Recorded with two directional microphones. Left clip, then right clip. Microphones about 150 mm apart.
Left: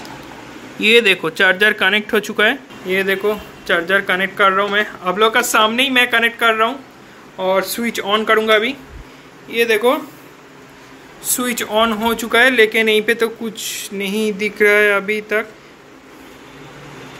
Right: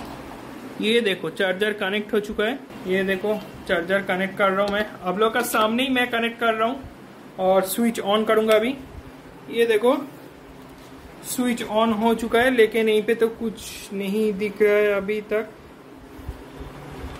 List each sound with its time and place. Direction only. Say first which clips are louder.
0.7 s speech: left 9 dB; 15° left (ahead or behind)
3.0 s speech: left 7 dB; 5° left (ahead or behind)
7.3 s speech: left 2 dB; 10° right (ahead or behind)
9.5 s speech: left 4 dB; 5° left (ahead or behind)
11.3 s speech: left 5 dB; 5° left (ahead or behind)